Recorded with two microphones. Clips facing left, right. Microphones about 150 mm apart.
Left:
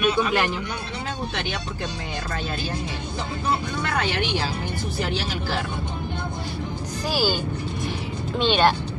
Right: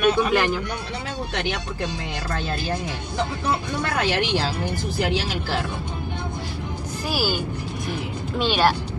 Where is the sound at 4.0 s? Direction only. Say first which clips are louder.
Right 3 dB; 90° right.